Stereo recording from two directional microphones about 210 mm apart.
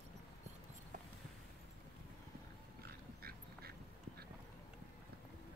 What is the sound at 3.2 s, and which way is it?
Duck, 45° right (ahead or behind).